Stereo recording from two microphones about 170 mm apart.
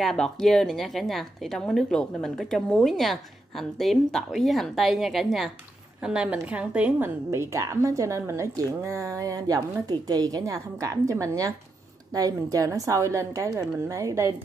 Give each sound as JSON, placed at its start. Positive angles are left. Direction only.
{"t": 0.0, "sound": "a woman's voice", "side_deg": 5}